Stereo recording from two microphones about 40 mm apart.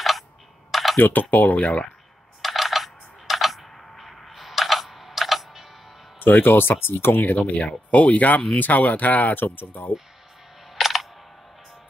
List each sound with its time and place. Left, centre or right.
0.7 s a sound: centre
0.9 s speech: left
2.4 s coin: centre
3.7 s music: centre
6.1 s speech: left
7.2 s speech: left
10.8 s music: centre